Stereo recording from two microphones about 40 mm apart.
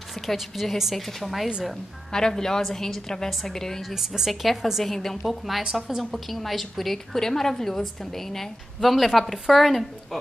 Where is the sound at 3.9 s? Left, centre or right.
Centre.